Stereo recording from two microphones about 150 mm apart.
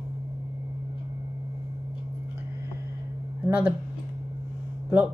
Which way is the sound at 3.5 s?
10° right (ahead or behind).